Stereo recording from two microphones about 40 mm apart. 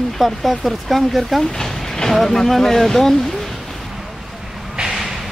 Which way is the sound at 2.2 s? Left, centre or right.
Centre.